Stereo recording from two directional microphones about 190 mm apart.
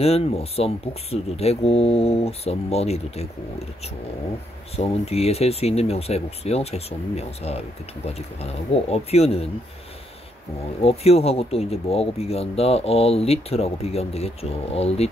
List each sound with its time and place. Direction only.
0.0 s speech: 30° left (ahead or behind)
4.7 s speech: 35° left (ahead or behind)
10.8 s speech: 30° left (ahead or behind)